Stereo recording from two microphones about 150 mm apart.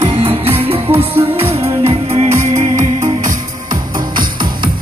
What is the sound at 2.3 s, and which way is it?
Music, 20° right (ahead or behind).